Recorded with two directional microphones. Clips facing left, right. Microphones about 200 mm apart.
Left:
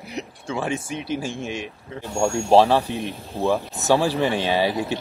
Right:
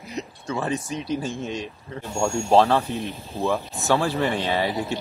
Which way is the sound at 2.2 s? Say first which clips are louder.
Left 2 dB; 10° left (ahead or behind).